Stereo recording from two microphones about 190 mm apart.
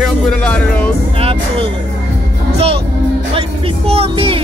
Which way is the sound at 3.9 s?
30° right (ahead or behind).